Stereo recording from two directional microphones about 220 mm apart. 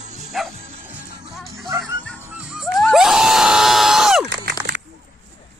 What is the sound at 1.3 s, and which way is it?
Music, centre (ahead or behind).